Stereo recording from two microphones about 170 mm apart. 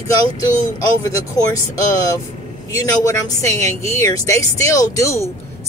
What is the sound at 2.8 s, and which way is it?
Speech, 20° left (ahead or behind).